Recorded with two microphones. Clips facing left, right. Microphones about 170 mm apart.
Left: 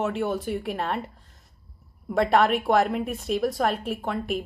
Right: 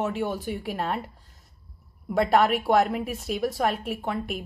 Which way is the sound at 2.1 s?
Centre (ahead or behind).